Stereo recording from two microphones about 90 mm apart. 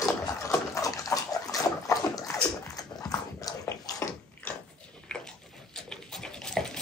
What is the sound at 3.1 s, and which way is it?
Dog, 40° left (ahead or behind).